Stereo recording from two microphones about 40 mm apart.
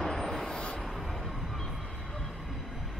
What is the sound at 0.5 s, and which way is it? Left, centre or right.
Music, left.